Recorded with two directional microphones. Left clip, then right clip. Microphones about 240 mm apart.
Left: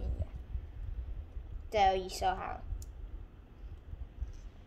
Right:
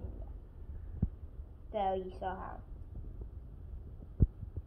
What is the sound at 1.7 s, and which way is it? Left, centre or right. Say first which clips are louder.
Speech: left 6 dB; left.